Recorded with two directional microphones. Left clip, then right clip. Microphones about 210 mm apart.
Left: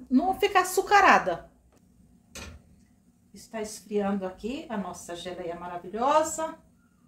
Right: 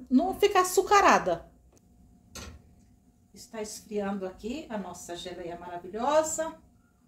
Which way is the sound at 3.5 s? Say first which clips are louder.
Left 3 dB; 30° left (ahead or behind).